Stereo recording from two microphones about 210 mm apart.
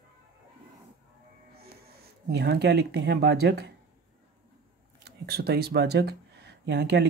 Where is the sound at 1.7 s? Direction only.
50° right (ahead or behind).